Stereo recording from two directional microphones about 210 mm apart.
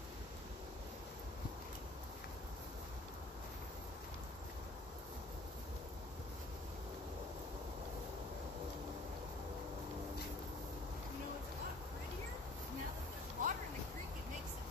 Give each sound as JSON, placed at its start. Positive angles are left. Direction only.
{"t": 13.4, "sound": "vehicle", "side_deg": -40}